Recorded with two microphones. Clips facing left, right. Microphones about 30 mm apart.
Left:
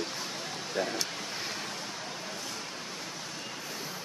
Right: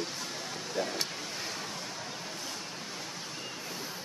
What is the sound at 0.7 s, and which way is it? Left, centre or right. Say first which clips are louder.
Vehicle: left 1 dB; centre.